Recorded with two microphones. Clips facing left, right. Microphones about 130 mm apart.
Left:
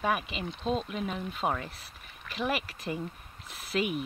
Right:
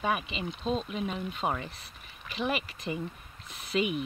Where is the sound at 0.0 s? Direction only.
Centre (ahead or behind).